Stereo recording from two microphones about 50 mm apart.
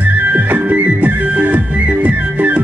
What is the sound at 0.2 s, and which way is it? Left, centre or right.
Music, right.